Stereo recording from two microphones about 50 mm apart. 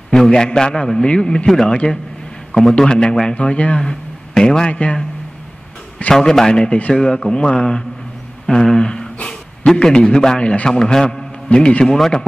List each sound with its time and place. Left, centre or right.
0.3 s a man's voice: centre
4.6 s a man's voice: left
6.1 s a man's voice: centre
8.5 s a sound: centre
9.7 s a man's voice: centre